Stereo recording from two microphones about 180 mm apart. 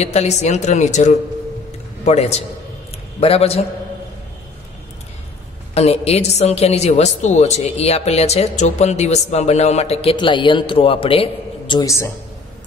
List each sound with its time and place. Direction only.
0.0 s a woman's voice: 35° left (ahead or behind)
5.8 s a woman's voice: 35° left (ahead or behind); by 12.1 s 15° left (ahead or behind)